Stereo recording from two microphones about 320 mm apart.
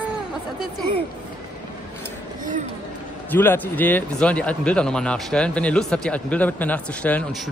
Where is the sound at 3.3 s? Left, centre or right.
Centre.